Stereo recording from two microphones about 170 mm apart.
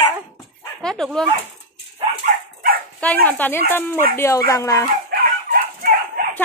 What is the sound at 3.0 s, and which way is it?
Speech, 10° left (ahead or behind).